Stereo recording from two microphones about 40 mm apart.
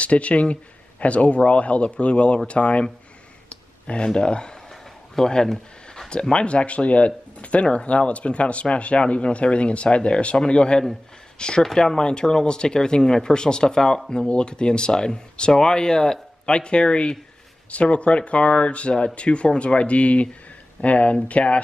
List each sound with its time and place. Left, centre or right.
0.0 s speech: left
3.4 s clicking: left
5.1 s a sound: centre
6.3 s speech: left